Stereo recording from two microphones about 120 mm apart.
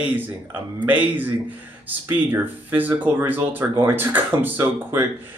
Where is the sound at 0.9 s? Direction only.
15° right (ahead or behind).